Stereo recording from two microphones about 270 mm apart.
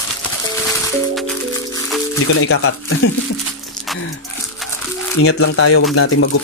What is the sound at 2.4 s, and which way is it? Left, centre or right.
Speech, left.